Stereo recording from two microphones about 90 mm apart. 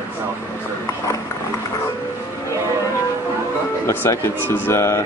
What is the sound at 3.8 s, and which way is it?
Speech, 25° left (ahead or behind).